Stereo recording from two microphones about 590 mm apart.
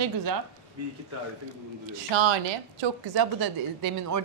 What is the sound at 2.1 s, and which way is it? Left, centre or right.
Speech, right.